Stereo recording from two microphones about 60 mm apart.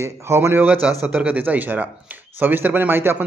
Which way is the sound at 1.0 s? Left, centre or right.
Right.